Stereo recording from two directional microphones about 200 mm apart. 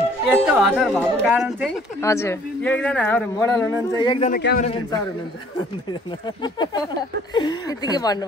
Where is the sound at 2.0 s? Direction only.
15° left (ahead or behind).